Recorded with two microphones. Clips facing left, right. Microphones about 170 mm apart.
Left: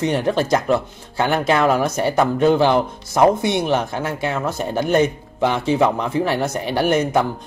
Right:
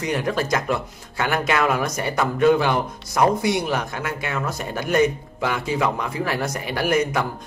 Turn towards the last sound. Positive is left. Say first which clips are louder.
# left 4 dB
turn(degrees=30)  # may be behind; listen again after turning